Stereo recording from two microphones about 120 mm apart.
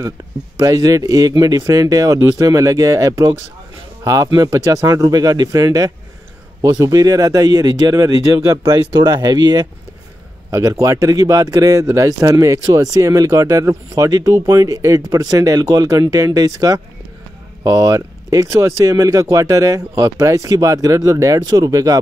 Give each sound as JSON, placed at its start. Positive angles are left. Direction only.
{"t": 0.2, "sound": "speech", "side_deg": -30}